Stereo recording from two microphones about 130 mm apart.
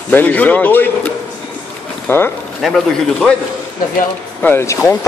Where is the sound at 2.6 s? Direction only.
5° left (ahead or behind).